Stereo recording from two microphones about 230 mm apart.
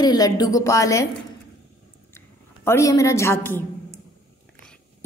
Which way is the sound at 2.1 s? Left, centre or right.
Centre.